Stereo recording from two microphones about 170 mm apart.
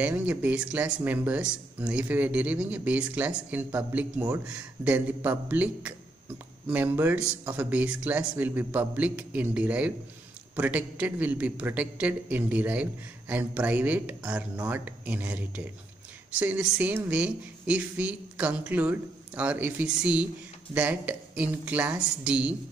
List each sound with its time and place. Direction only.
0.0 s speech: 10° right (ahead or behind)